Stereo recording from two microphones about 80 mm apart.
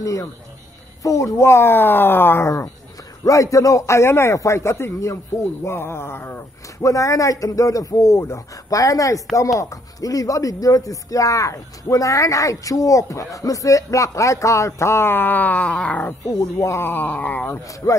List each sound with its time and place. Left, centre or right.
0.0 s a man's voice: left
3.3 s a man's voice: left
6.8 s speech: left; by 16.1 s centre
16.3 s speech: left
17.5 s a man's voice: left